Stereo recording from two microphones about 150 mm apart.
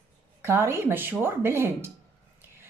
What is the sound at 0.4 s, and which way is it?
A woman's voice, 15° right (ahead or behind).